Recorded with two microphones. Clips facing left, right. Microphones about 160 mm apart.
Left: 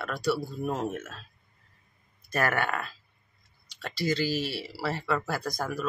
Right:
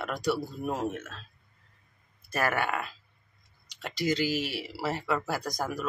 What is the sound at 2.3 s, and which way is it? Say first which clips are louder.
Speech: left 1 dB; 10° right (ahead or behind).